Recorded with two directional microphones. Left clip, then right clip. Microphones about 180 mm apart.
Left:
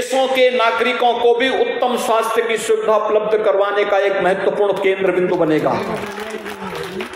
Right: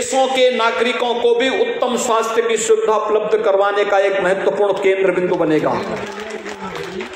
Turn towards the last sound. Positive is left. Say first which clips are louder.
# even
turn(degrees=0)  # may be behind; listen again after turning